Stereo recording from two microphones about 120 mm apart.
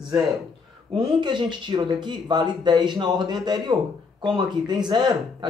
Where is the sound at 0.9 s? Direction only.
40° right (ahead or behind).